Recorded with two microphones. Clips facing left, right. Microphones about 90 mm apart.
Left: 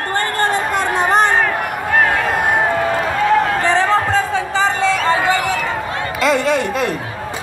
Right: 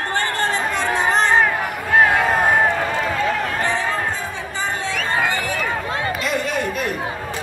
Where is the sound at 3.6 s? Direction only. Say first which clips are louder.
Left 7 dB; 90° left.